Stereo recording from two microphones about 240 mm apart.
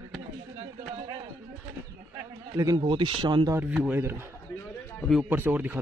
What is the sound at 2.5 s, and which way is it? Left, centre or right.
A man's voice, centre.